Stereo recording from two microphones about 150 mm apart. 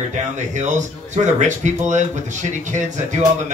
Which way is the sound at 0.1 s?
55° right (ahead or behind).